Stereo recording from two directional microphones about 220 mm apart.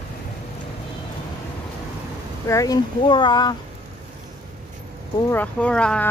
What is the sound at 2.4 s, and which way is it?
Speech, 15° left (ahead or behind).